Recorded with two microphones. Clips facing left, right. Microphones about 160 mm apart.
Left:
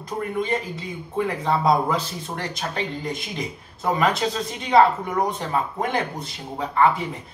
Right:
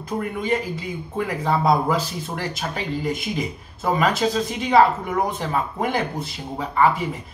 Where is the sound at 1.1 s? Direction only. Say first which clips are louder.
Even; 5° right (ahead or behind).